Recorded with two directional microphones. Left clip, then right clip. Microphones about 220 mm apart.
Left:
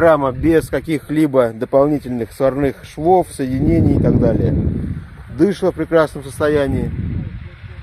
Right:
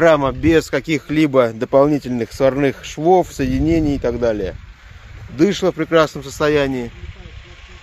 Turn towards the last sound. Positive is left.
turn(degrees=-50)  # may be behind; listen again after turning